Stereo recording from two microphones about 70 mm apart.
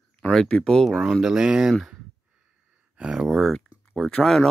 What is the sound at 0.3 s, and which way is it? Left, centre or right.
Speech, centre.